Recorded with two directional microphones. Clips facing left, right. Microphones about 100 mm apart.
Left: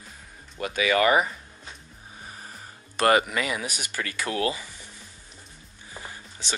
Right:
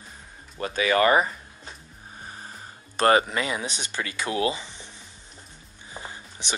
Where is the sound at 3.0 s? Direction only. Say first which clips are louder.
Right 1 dB; 30° right (ahead or behind).